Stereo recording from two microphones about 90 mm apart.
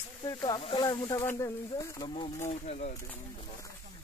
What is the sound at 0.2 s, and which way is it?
Speech, 50° left (ahead or behind).